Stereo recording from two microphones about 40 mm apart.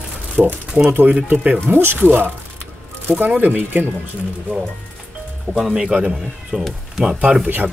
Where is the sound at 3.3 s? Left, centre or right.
Right.